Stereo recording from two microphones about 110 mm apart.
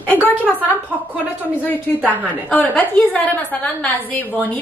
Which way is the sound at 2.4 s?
15° left (ahead or behind).